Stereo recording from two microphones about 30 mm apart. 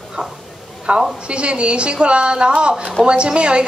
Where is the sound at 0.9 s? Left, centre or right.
Right.